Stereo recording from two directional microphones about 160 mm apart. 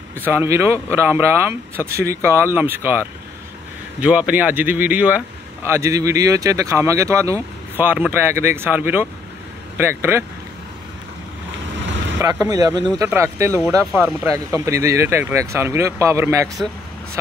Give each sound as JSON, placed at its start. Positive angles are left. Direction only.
{"t": 0.2, "sound": "speech", "side_deg": -15}
{"t": 4.0, "sound": "speech", "side_deg": -5}
{"t": 12.2, "sound": "speech", "side_deg": -20}